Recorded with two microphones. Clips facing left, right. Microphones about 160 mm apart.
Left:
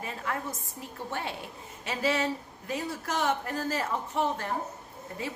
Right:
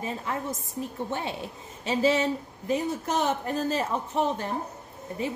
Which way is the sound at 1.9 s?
20° right (ahead or behind).